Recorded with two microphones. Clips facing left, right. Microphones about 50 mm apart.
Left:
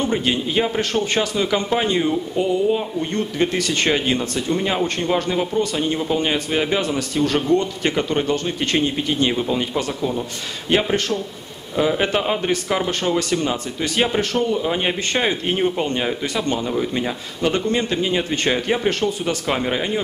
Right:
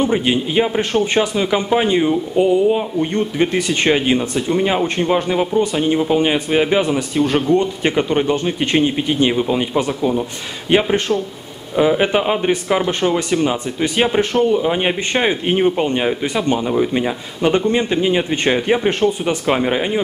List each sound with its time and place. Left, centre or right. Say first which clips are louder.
0.0 s a man's voice: right 4 dB; centre